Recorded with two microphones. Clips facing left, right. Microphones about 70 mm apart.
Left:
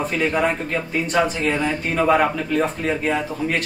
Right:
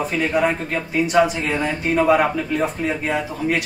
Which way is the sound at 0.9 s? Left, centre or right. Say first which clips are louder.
Right 4 dB; centre.